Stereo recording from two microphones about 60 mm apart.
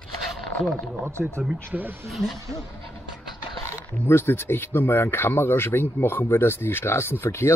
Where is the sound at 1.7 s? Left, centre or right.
Right.